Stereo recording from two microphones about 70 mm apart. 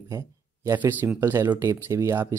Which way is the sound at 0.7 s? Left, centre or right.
Right.